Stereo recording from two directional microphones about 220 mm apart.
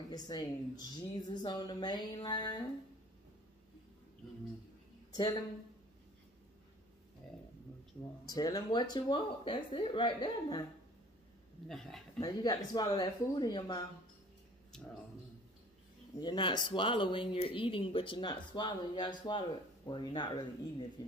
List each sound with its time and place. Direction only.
0.1 s speech: 20° left (ahead or behind)
5.1 s speech: 20° left (ahead or behind)
8.3 s speech: 15° left (ahead or behind)
11.6 s speech: centre (ahead or behind)
12.2 s speech: 15° left (ahead or behind)
14.7 s speech: centre (ahead or behind)
16.2 s speech: 20° left (ahead or behind)